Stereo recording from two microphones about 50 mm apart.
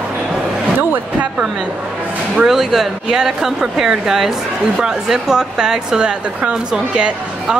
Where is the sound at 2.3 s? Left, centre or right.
Centre.